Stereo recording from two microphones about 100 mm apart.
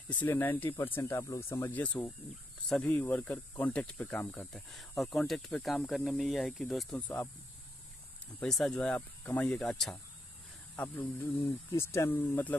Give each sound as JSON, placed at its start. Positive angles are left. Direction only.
{"t": 0.1, "sound": "speech", "side_deg": 15}
{"t": 1.7, "sound": "speech", "side_deg": 15}
{"t": 4.5, "sound": "speech", "side_deg": 0}
{"t": 7.0, "sound": "speech", "side_deg": 15}
{"t": 8.5, "sound": "speech", "side_deg": 5}
{"t": 9.6, "sound": "speech", "side_deg": 5}
{"t": 10.8, "sound": "speech", "side_deg": 25}
{"t": 12.1, "sound": "speech", "side_deg": 15}